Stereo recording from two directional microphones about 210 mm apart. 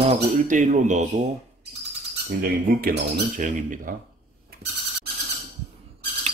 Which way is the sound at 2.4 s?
45° right (ahead or behind).